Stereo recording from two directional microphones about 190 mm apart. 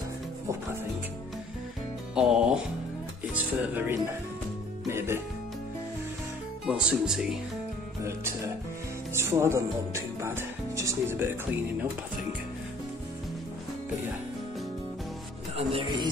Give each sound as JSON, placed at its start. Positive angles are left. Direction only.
{"t": 2.1, "sound": "speech", "side_deg": -5}
{"t": 6.6, "sound": "speech", "side_deg": -5}
{"t": 9.1, "sound": "speech", "side_deg": -15}
{"t": 15.5, "sound": "speech", "side_deg": -30}